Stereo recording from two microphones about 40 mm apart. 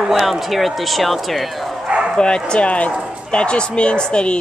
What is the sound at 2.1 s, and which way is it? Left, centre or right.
Speech, left.